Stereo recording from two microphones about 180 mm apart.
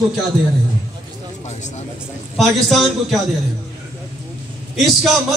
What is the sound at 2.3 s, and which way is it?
Speech, centre (ahead or behind).